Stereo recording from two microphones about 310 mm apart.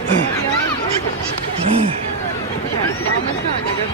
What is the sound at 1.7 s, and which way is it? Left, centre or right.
Speech, centre.